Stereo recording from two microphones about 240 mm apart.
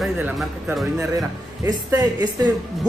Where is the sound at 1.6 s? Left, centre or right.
Centre.